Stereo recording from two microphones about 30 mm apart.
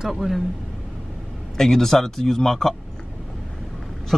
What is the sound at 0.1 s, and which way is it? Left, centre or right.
Speech, centre.